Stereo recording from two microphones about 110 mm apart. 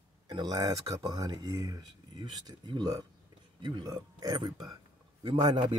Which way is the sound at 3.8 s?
35° right (ahead or behind).